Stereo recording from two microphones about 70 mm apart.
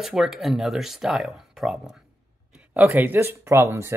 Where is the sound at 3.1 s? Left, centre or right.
Right.